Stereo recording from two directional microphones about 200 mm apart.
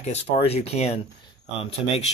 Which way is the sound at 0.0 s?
30° left (ahead or behind).